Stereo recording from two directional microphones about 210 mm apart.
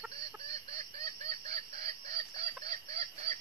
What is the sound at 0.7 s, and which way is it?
Chicken, 30° right (ahead or behind).